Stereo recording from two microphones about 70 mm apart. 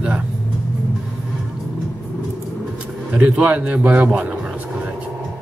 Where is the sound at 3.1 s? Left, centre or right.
Centre.